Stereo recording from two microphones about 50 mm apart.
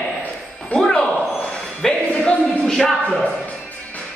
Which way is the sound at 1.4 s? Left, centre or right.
Centre.